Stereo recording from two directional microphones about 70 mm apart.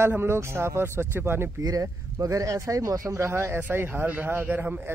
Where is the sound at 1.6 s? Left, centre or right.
Right.